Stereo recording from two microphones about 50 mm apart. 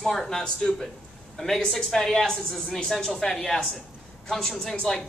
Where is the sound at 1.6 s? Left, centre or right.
Centre.